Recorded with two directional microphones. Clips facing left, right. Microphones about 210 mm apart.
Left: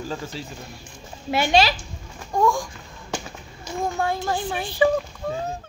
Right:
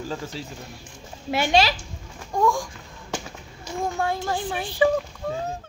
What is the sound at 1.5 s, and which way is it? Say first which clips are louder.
Speech: left 1 dB; 35° left (ahead or behind).